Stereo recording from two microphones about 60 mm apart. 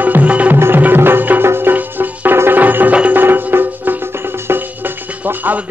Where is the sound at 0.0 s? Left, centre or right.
Right.